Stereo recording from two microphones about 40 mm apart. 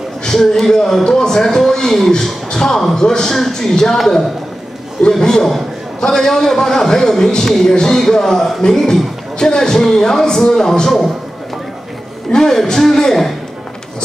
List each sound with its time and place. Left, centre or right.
0.2 s a man's voice: centre
5.2 s a man's voice: centre
12.3 s a man's voice: centre